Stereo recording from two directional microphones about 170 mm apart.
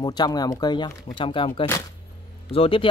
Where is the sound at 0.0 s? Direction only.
25° left (ahead or behind).